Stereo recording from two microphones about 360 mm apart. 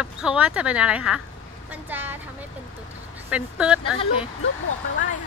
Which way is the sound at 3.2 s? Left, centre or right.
Centre.